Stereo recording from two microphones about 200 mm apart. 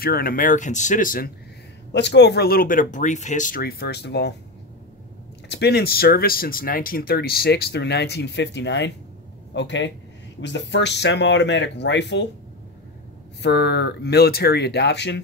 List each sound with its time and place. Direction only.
0.0 s speech: 45° left (ahead or behind)
1.9 s speech: 60° left (ahead or behind)
5.5 s speech: 55° left (ahead or behind)
13.4 s speech: 60° left (ahead or behind)